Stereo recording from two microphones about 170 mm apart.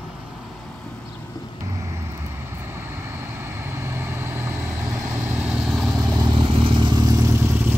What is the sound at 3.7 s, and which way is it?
Vehicle, 15° right (ahead or behind).